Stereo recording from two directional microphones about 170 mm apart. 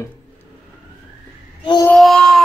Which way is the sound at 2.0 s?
Centre (ahead or behind).